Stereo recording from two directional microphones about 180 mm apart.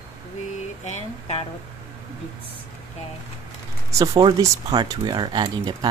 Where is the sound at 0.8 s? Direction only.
35° left (ahead or behind).